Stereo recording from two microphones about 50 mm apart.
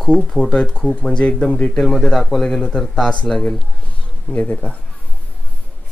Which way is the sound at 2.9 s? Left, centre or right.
Centre.